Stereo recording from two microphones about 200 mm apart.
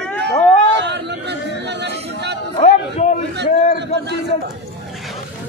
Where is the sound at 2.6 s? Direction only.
35° left (ahead or behind).